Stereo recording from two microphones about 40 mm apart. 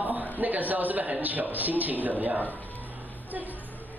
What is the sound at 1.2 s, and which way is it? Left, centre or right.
A woman's voice, right.